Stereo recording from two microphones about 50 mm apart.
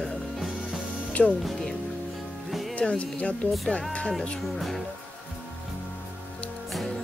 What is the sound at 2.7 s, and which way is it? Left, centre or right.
Speech, left.